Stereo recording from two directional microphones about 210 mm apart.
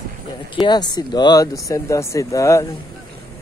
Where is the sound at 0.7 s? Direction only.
20° left (ahead or behind).